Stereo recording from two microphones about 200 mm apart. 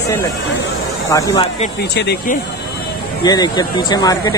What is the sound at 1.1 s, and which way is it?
Speech, 15° left (ahead or behind).